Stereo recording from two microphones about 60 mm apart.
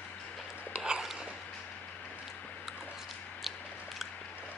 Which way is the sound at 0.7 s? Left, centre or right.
Centre.